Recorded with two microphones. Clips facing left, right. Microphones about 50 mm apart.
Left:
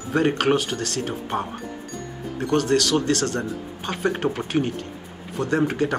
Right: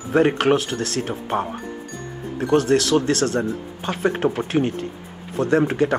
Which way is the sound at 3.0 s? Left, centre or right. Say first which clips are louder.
Right 3 dB; right.